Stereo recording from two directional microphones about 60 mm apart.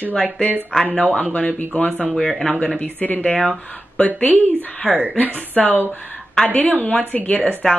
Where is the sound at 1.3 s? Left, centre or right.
Left.